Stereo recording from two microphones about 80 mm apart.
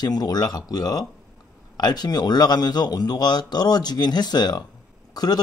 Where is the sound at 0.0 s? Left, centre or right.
Left.